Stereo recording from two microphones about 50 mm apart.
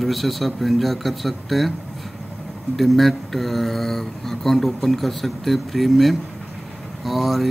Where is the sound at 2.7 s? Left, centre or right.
Centre.